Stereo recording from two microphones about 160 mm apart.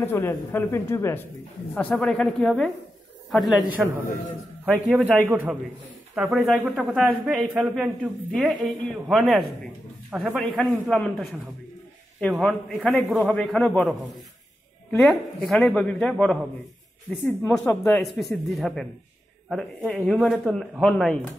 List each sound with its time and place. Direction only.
0.0 s a man's voice: 15° left (ahead or behind)
5.3 s a man's voice: 10° right (ahead or behind); by 16.3 s 5° left (ahead or behind)
17.4 s speech: 15° left (ahead or behind)
17.9 s a man's voice: centre (ahead or behind)
19.9 s a man's voice: centre (ahead or behind)